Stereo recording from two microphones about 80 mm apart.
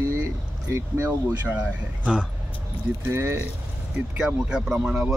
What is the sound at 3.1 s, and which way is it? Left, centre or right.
Speech, right.